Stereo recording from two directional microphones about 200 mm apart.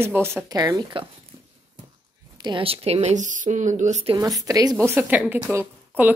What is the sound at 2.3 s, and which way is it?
Speech, 25° right (ahead or behind).